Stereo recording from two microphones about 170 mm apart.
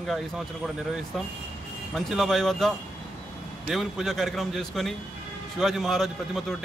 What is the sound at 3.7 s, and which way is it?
A man's voice, centre (ahead or behind).